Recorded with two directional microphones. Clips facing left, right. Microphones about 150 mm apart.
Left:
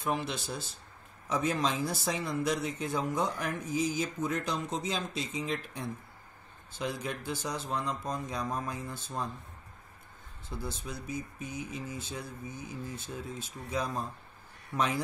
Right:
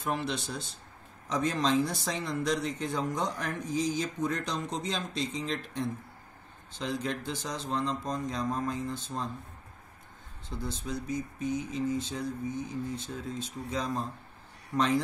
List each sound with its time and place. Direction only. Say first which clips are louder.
0.0 s speech: right 1 dB; centre (ahead or behind)
10.5 s speech: right 4 dB; 10° left (ahead or behind)